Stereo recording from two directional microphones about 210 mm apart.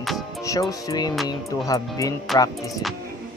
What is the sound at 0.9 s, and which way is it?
Speech, 20° left (ahead or behind).